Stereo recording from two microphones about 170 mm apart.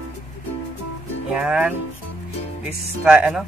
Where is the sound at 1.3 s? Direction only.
5° right (ahead or behind).